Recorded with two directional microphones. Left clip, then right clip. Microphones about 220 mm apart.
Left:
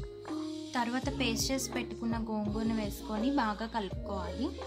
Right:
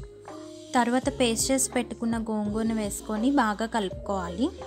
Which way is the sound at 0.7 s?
25° right (ahead or behind).